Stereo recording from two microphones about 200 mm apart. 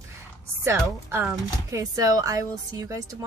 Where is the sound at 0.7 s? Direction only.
10° right (ahead or behind).